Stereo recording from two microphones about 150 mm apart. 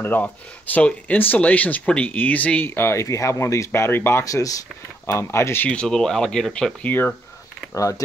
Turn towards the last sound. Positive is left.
turn(degrees=20)  # may be behind; listen again after turning